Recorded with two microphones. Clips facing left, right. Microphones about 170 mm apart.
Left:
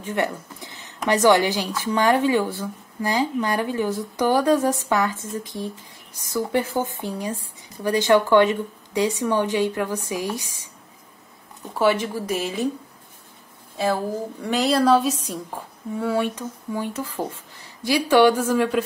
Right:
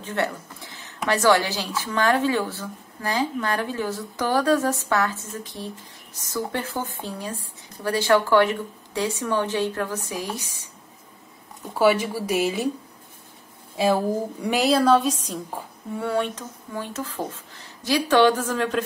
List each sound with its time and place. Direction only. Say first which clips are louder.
0.0 s speech: left 2 dB; 15° left (ahead or behind)
11.7 s speech: right 1 dB; 5° right (ahead or behind)
14.4 s speech: left 1 dB; 10° right (ahead or behind); by 18.9 s 10° left (ahead or behind)